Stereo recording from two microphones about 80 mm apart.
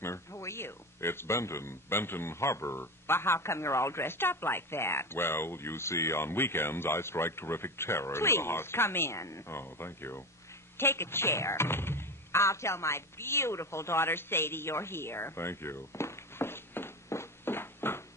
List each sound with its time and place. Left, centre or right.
0.0 s speech: left